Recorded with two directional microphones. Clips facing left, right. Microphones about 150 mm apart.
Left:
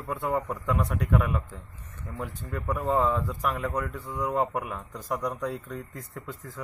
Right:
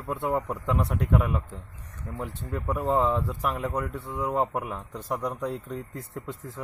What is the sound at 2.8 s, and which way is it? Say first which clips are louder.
A man's voice: right 1 dB; centre (ahead or behind).